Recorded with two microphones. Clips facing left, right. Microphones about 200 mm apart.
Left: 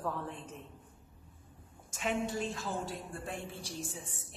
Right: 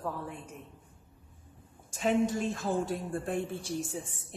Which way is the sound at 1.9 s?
35° right (ahead or behind).